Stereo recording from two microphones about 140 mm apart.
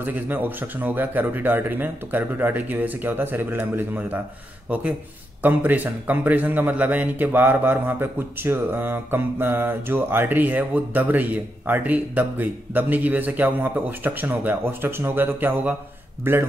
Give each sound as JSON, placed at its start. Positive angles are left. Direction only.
{"t": 0.0, "sound": "a man's voice", "side_deg": -15}
{"t": 5.4, "sound": "a man's voice", "side_deg": -15}